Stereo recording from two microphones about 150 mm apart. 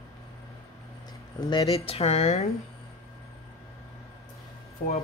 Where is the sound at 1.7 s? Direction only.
40° left (ahead or behind).